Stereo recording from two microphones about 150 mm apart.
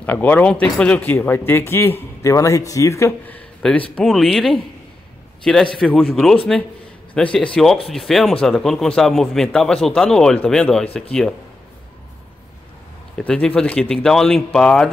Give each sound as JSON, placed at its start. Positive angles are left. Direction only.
{"t": 0.0, "sound": "a man's voice", "side_deg": 10}
{"t": 13.2, "sound": "a man's voice", "side_deg": 10}